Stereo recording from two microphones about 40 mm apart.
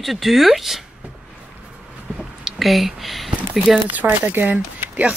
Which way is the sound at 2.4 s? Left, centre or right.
Centre.